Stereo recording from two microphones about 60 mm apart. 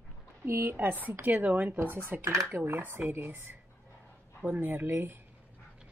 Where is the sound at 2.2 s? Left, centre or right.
Right.